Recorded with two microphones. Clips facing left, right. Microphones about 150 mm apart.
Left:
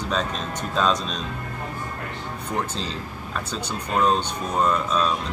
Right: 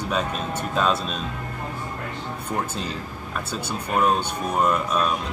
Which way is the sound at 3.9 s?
10° right (ahead or behind).